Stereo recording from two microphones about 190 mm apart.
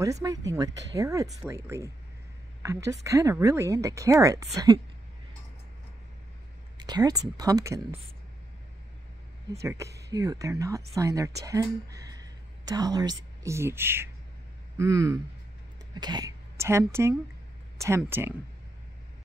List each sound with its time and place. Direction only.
0.0 s a woman's voice: 20° right (ahead or behind)
6.8 s speech: 20° right (ahead or behind)
9.5 s a woman's voice: 15° right (ahead or behind)